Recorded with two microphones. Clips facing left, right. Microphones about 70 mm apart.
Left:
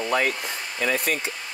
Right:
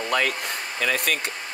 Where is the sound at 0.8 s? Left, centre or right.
Right.